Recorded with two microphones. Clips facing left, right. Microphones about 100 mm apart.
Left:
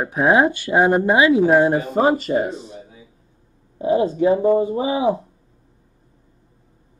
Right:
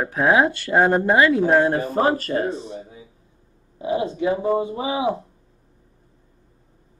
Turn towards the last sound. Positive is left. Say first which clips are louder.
# left 4 dB
turn(degrees=35)  # may be behind; listen again after turning